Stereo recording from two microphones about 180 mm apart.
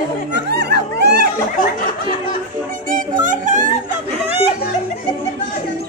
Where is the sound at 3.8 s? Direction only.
35° right (ahead or behind).